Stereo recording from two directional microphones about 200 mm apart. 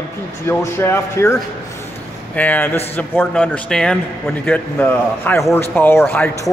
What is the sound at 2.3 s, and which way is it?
A man's voice, 10° left (ahead or behind).